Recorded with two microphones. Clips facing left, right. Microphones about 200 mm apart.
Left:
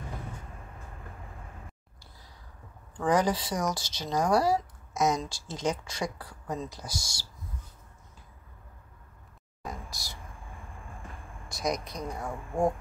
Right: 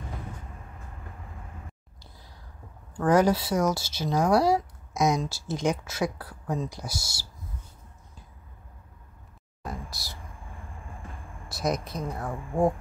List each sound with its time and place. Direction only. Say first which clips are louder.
3.1 s speech: right 4 dB; 10° right (ahead or behind)
9.8 s speech: right 1 dB; 15° left (ahead or behind)
11.4 s speech: right 3 dB; 5° right (ahead or behind)